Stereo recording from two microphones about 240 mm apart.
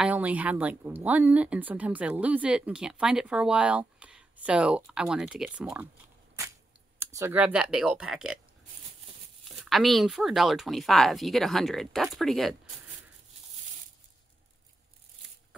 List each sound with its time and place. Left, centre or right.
0.0 s speech: centre
7.0 s speech: centre
9.7 s speech: centre